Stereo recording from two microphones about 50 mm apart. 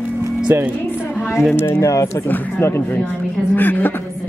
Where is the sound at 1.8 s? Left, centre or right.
Left.